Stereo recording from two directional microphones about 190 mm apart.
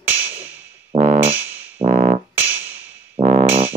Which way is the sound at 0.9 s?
40° right (ahead or behind).